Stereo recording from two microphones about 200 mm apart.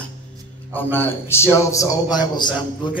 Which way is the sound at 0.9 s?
10° left (ahead or behind).